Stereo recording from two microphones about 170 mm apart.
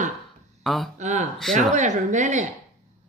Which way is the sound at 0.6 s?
Centre (ahead or behind).